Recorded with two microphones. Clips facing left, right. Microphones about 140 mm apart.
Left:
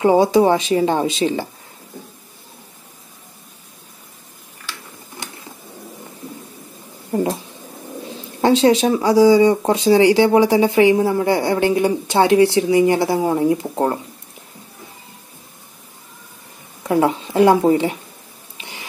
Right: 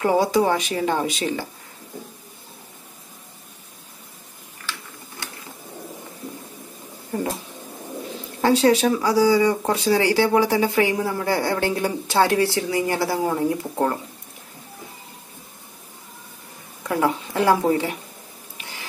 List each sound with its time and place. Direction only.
0.0 s speech: 25° left (ahead or behind)
7.1 s speech: 30° left (ahead or behind)
8.4 s speech: 25° left (ahead or behind)
16.8 s speech: 25° left (ahead or behind)